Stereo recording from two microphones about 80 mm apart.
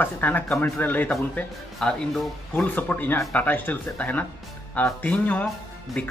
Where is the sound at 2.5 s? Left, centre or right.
Left.